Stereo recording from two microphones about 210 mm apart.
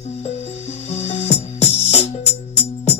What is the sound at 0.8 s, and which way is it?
Music, 30° left (ahead or behind).